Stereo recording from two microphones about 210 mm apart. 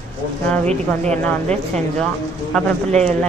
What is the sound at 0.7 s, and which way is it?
Speech, 30° right (ahead or behind).